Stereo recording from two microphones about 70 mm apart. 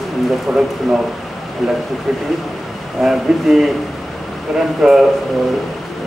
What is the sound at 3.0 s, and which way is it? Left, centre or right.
Speech, centre.